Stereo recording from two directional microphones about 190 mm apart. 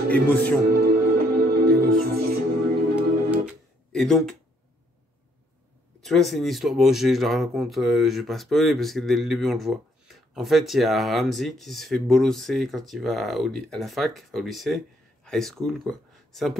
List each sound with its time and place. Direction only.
0.1 s a man's voice: 10° left (ahead or behind)
0.7 s music: 55° right (ahead or behind)
3.0 s music: centre (ahead or behind)
5.9 s speech: centre (ahead or behind)